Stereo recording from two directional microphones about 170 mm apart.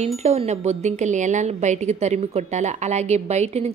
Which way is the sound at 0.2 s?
40° right (ahead or behind).